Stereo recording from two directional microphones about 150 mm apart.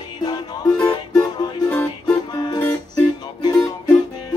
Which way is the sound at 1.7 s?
10° left (ahead or behind).